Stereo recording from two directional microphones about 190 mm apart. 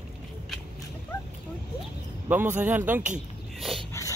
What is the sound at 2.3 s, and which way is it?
Speech, 10° right (ahead or behind).